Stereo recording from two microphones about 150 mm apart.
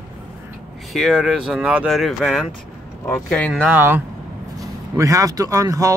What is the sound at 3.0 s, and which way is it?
Speech, 10° left (ahead or behind).